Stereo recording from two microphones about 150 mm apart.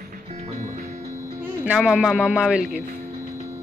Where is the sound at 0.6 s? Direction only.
60° right (ahead or behind).